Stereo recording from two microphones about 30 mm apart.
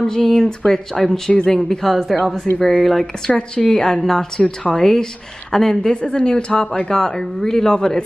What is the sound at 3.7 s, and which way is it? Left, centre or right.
A woman's voice, centre.